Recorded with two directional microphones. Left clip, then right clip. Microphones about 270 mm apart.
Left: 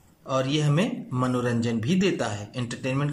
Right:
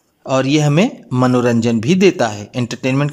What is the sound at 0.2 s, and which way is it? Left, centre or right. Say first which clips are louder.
Speech: right 11 dB; right.